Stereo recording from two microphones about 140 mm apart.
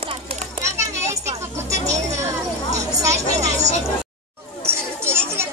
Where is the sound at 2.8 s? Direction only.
25° right (ahead or behind).